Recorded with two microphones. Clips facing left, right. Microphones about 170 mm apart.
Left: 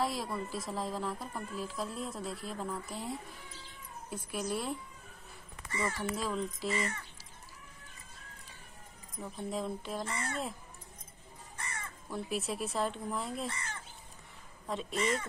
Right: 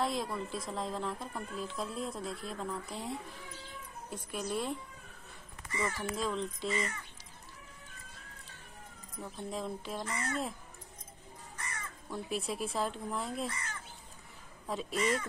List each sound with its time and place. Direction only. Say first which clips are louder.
0.0 s speech: even; centre (ahead or behind)
4.1 s speech: left 1 dB; 5° left (ahead or behind)
6.1 s speech: even; 5° left (ahead or behind)
9.2 s speech: left 2 dB; centre (ahead or behind)
10.0 s speech: right 1 dB; 30° left (ahead or behind)
11.5 s music: left 1 dB; 30° left (ahead or behind)
12.1 s speech: left 1 dB; centre (ahead or behind)
13.5 s speech: left 1 dB; 30° left (ahead or behind)
14.7 s speech: even; centre (ahead or behind)
15.0 s speech: right 1 dB; 30° left (ahead or behind)